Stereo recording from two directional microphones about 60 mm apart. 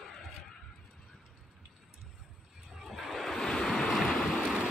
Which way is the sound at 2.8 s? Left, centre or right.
Centre.